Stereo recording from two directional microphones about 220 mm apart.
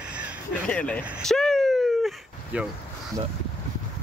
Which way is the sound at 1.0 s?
Centre (ahead or behind).